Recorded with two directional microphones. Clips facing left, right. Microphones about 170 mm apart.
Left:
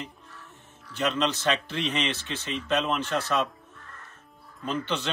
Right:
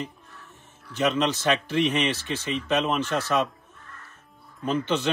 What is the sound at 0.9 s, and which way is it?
Speech, 20° right (ahead or behind).